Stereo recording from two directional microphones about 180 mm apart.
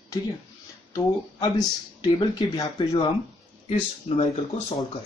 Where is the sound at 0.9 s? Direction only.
20° left (ahead or behind).